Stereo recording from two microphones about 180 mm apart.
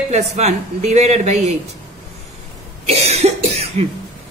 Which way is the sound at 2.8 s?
35° right (ahead or behind).